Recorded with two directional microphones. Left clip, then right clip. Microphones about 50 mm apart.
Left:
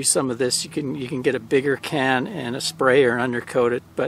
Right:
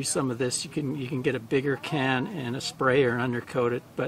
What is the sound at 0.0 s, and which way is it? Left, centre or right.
Speech, left.